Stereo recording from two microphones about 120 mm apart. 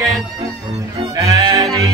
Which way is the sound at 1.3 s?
30° right (ahead or behind).